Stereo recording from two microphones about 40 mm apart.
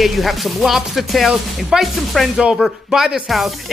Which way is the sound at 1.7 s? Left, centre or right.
Centre.